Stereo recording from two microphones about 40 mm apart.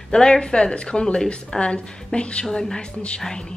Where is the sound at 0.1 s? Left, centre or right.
Centre.